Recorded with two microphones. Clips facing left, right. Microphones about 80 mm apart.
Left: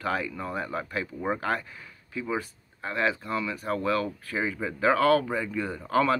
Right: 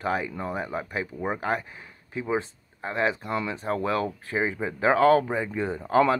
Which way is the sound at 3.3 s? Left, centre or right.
Right.